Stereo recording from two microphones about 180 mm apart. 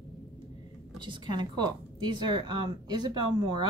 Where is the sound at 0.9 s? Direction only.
25° right (ahead or behind).